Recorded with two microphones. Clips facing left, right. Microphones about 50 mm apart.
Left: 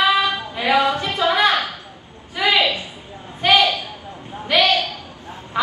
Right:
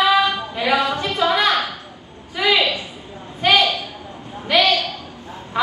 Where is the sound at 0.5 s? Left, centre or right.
Left.